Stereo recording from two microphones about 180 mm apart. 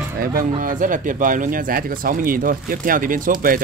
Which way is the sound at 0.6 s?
45° right (ahead or behind).